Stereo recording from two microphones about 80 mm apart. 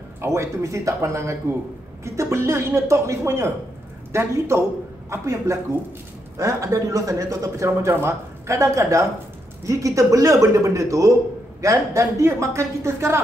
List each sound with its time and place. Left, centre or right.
0.2 s a man's voice: right